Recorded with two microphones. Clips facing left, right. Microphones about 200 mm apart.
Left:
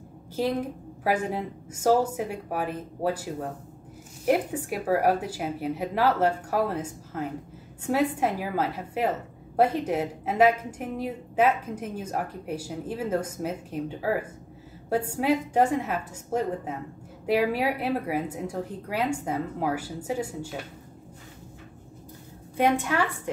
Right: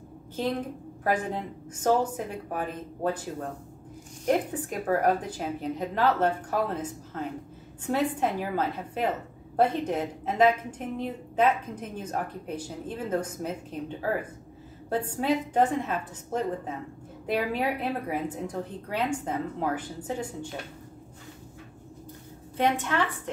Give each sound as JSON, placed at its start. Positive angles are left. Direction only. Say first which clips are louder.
{"t": 1.0, "sound": "a woman's voice", "louder": "left 2 dB", "side_deg": 10}
{"t": 22.6, "sound": "a woman's voice", "louder": "left 2 dB", "side_deg": 10}